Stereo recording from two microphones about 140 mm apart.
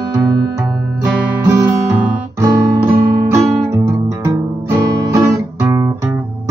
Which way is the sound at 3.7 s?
20° right (ahead or behind).